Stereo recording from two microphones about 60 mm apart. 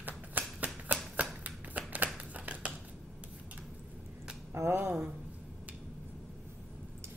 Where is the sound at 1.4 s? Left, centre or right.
Right.